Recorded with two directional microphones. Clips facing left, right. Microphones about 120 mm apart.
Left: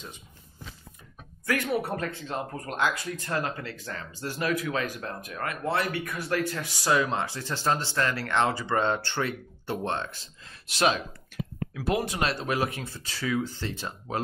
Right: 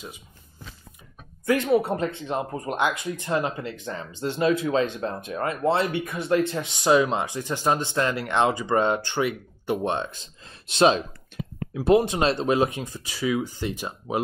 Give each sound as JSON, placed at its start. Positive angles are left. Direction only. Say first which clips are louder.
{"t": 1.4, "sound": "speech", "louder": "right 7 dB", "side_deg": -20}
{"t": 11.3, "sound": "a sound", "louder": "even", "side_deg": -25}
{"t": 11.7, "sound": "speech", "louder": "right 9 dB", "side_deg": -25}